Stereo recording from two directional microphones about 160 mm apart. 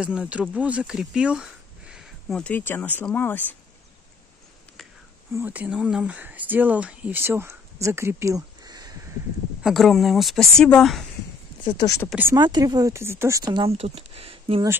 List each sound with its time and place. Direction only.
0.0 s speech: 5° right (ahead or behind); by 3.5 s 10° left (ahead or behind)
5.3 s speech: 10° right (ahead or behind)
9.6 s speech: centre (ahead or behind)
11.6 s speech: 30° left (ahead or behind)
12.4 s speech: 25° right (ahead or behind)